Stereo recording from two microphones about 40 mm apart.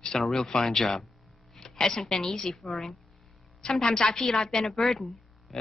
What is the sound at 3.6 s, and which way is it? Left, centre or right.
A woman's voice, centre.